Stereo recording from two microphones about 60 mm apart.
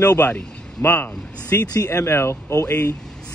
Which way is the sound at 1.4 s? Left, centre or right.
Left.